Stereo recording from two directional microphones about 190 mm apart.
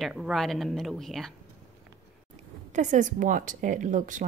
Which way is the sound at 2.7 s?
40° right (ahead or behind).